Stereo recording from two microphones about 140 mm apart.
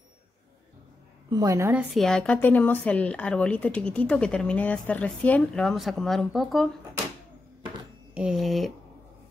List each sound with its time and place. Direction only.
1.3 s a woman's voice: 25° right (ahead or behind)
2.0 s speech: 5° left (ahead or behind)
8.1 s speech: 5° right (ahead or behind)